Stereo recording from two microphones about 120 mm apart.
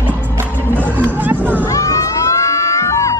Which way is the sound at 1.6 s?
25° left (ahead or behind).